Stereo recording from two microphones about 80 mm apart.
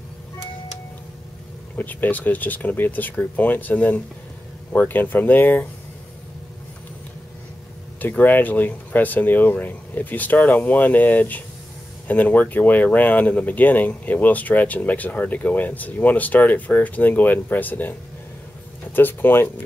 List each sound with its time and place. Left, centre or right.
1.8 s speech: left
8.0 s speech: left
18.9 s speech: left